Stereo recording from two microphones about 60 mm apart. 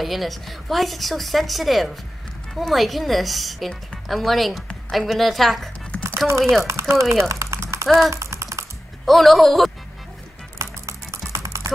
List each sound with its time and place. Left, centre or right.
0.0 s a woman's voice: centre
6.0 s speech: right
7.2 s a sound: right
8.1 s typing: right
9.0 s a woman's voice: centre
10.6 s music: right